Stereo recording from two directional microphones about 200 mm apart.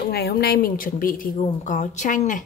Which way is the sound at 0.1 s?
50° left (ahead or behind).